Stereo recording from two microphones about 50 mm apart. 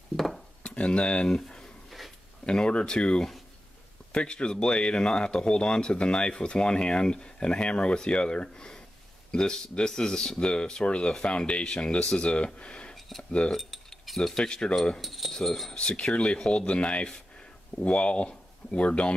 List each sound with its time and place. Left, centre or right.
0.1 s cutlery: centre
0.7 s speech: left
1.9 s a sound: centre
2.4 s speech: centre
13.5 s keys jangling: centre
14.3 s speech: centre
15.0 s speech: centre
15.7 s speech: centre